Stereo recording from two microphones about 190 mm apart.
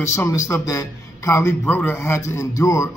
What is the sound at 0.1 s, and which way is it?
Speech, 15° left (ahead or behind).